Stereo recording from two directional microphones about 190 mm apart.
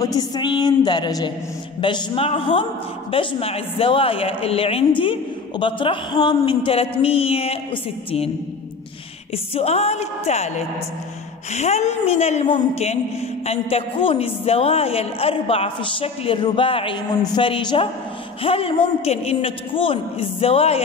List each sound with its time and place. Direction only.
0.0 s speech: 20° left (ahead or behind)
9.3 s a man's voice: 30° left (ahead or behind)
11.5 s a man's voice: 35° left (ahead or behind)